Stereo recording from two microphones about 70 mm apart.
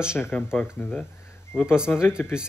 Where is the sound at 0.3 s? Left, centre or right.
Left.